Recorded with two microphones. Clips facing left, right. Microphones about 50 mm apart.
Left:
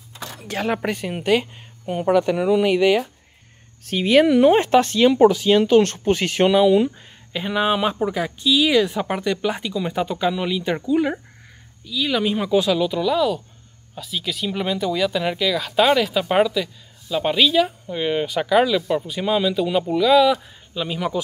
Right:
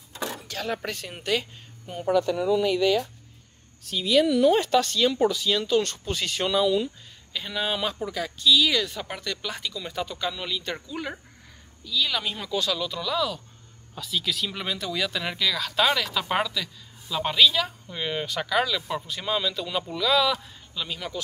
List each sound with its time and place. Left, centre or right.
0.5 s speech: left
2.0 s speech: left; by 21.2 s centre